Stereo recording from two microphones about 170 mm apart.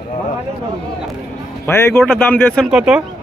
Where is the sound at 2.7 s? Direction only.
5° right (ahead or behind).